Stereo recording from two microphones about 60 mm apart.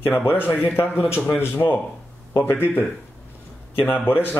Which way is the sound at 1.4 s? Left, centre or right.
Left.